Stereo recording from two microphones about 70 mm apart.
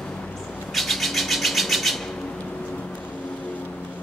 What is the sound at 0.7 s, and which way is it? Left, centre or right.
Bird, centre.